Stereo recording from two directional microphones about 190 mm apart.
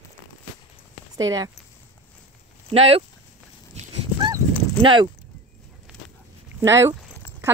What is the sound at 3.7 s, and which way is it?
Dog, 35° right (ahead or behind).